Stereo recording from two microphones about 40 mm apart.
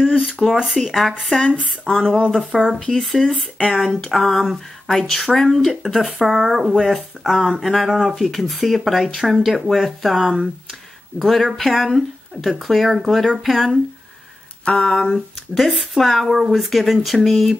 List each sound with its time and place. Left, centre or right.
0.4 s a sound: centre
0.8 s speech: centre
1.9 s a sound: centre
2.3 s speech: centre
3.5 s speech: left
4.0 s speech: centre
5.9 s speech: centre
14.6 s speech: left
15.1 s speech: centre